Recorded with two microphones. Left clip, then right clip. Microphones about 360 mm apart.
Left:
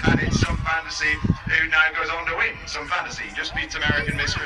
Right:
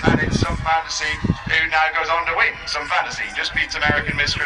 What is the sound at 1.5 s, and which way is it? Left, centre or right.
Speech, centre.